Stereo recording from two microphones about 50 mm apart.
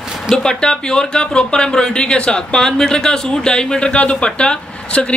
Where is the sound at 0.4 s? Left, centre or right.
Centre.